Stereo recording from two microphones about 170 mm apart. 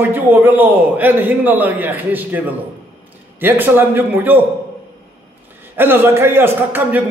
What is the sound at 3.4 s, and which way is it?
A man's voice, 10° right (ahead or behind).